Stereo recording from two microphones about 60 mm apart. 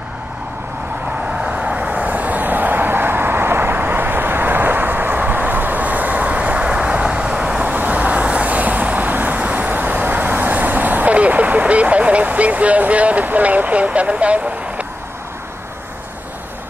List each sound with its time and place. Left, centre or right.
1.4 s vehicle: right
7.7 s vehicle: right